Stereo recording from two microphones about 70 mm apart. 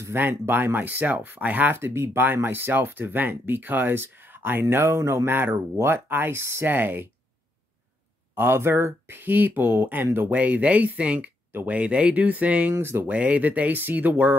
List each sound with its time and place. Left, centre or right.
0.0 s speech: right
8.4 s speech: right
12.7 s speech: right
13.1 s speech: right